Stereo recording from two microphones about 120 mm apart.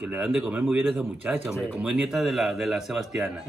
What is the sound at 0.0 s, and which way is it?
Speech, 10° right (ahead or behind).